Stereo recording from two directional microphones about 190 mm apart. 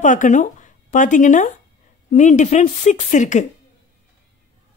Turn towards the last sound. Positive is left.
turn(degrees=40)  # may be behind; listen again after turning